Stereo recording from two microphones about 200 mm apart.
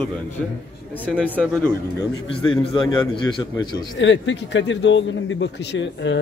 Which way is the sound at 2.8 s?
20° left (ahead or behind).